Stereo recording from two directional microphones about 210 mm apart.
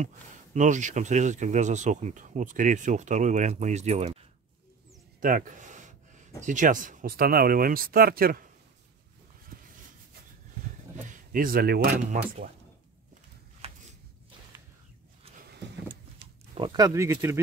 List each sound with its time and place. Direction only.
0.0 s speech: 35° right (ahead or behind)
5.2 s speech: 40° right (ahead or behind)
9.5 s a sound: 40° right (ahead or behind)
11.3 s speech: 45° right (ahead or behind)
13.6 s a sound: 30° right (ahead or behind)
16.5 s speech: 20° right (ahead or behind)